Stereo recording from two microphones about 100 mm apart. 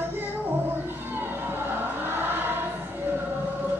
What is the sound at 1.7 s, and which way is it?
Choir, 20° right (ahead or behind).